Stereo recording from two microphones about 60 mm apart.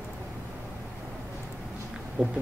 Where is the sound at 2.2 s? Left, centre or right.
Centre.